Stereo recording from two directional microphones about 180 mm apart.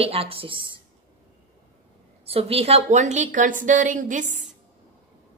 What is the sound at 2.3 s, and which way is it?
A woman's voice, 35° right (ahead or behind).